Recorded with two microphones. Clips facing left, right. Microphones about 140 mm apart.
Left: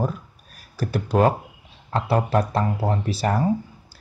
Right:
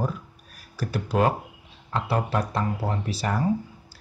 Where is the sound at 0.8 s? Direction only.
55° left (ahead or behind).